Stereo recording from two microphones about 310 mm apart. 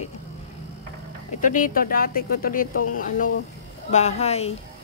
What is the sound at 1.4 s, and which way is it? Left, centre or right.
Speech, left.